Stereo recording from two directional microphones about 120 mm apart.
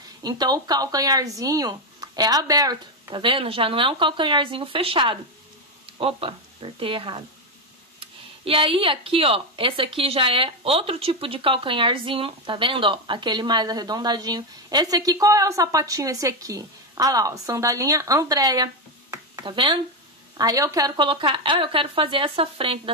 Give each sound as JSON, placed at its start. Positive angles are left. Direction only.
{"t": 0.2, "sound": "speech", "side_deg": -35}
{"t": 20.3, "sound": "a woman's voice", "side_deg": -30}